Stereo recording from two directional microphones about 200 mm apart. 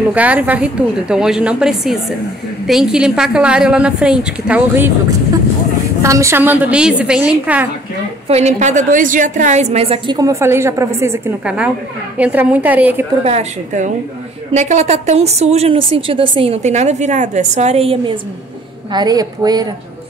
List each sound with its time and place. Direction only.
0.1 s a woman's voice: 5° right (ahead or behind)
6.0 s a woman's voice: 15° right (ahead or behind)
8.3 s a woman's voice: 35° right (ahead or behind); by 13.0 s 10° right (ahead or behind)
13.2 s a woman's voice: 30° right (ahead or behind)